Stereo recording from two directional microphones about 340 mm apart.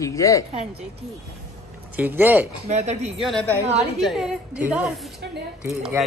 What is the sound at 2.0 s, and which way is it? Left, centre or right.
Speech, centre.